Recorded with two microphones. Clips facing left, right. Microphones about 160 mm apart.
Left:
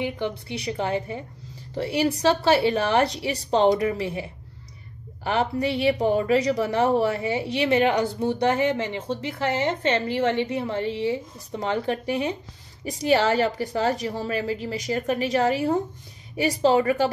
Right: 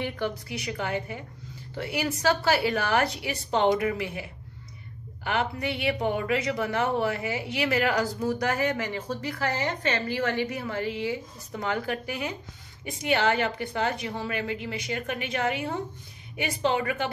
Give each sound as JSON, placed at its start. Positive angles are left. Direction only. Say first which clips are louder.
{"t": 0.0, "sound": "a woman's voice", "louder": "left 3 dB", "side_deg": 15}
{"t": 0.3, "sound": "a woman's voice", "louder": "left 4 dB", "side_deg": 30}